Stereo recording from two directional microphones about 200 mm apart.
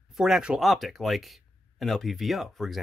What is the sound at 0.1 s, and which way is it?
Speech, centre (ahead or behind).